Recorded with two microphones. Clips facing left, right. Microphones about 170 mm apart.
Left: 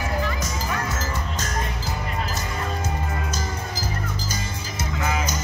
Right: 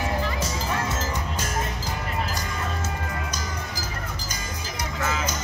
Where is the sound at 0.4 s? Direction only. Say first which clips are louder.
Even; 30° right (ahead or behind).